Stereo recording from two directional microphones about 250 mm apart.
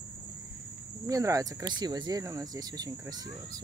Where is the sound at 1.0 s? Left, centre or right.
Centre.